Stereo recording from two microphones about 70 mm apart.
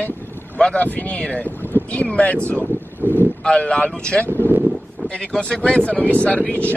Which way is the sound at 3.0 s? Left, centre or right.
Right.